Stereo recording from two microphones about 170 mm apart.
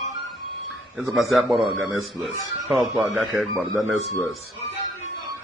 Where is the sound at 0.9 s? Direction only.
Centre (ahead or behind).